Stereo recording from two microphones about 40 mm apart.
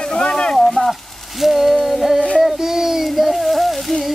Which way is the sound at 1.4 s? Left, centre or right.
Centre.